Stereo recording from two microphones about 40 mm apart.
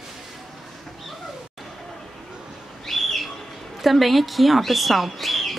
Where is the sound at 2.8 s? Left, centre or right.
Centre.